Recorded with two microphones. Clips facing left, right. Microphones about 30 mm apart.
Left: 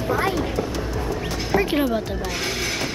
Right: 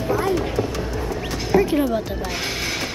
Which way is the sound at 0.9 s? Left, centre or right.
Centre.